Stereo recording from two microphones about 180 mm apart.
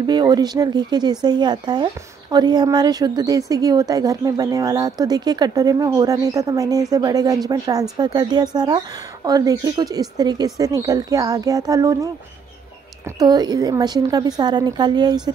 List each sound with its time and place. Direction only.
0.0 s a woman's voice: 25° right (ahead or behind)
13.2 s a woman's voice: 20° right (ahead or behind)